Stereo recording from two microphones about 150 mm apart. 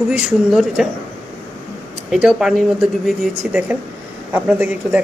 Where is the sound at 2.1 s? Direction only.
5° right (ahead or behind).